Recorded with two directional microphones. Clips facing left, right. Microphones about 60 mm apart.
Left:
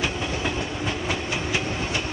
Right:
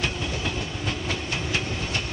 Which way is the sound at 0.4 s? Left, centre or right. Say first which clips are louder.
Left 3 dB; left.